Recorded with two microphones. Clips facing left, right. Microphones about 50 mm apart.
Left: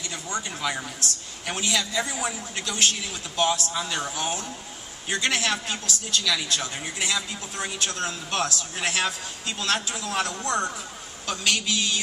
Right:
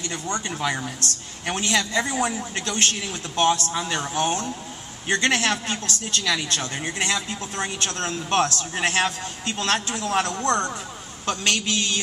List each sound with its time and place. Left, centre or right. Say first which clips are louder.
0.7 s a woman's voice: right 3 dB; right